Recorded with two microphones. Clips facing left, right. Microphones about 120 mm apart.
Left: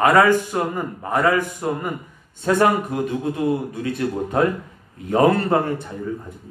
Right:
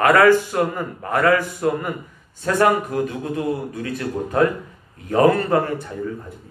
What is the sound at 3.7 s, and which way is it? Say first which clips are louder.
Speech: left 2 dB; 25° left (ahead or behind).